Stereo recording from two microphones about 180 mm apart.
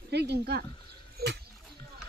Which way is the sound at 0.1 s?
65° right (ahead or behind).